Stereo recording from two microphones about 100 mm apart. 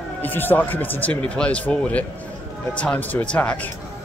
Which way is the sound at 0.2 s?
20° left (ahead or behind).